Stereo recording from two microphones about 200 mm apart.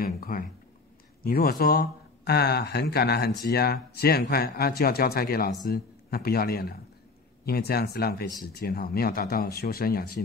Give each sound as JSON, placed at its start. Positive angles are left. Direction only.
{"t": 0.0, "sound": "speech", "side_deg": 45}